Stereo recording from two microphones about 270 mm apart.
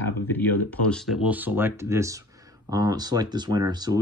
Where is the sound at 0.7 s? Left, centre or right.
Centre.